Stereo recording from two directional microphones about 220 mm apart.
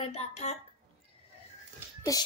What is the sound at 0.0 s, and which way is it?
Speech, 30° left (ahead or behind).